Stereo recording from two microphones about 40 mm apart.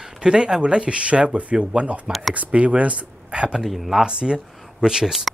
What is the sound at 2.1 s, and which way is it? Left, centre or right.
Speech, centre.